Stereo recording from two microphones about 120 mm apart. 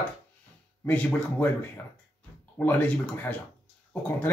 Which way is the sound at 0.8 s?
15° left (ahead or behind).